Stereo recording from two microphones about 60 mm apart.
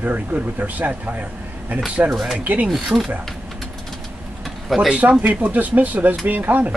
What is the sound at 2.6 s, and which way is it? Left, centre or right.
Speech, centre.